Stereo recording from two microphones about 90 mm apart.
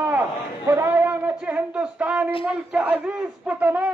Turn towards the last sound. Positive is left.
turn(degrees=-15)  # may be behind; listen again after turning